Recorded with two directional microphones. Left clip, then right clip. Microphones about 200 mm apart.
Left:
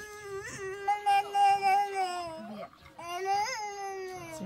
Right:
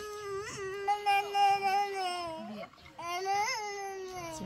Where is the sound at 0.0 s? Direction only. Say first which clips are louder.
Right 2 dB; 20° left (ahead or behind).